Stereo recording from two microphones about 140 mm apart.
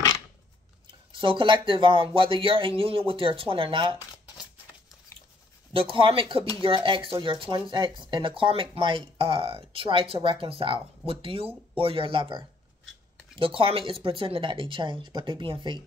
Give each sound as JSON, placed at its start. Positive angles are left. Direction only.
{"t": 0.8, "sound": "speech", "side_deg": -35}
{"t": 5.7, "sound": "speech", "side_deg": -40}